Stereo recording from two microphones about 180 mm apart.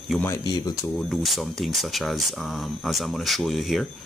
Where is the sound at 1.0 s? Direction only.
Centre (ahead or behind).